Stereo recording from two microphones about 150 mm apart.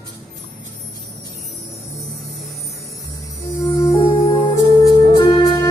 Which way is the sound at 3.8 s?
20° left (ahead or behind).